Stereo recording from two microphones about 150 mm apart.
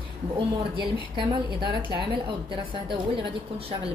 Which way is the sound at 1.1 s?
30° right (ahead or behind).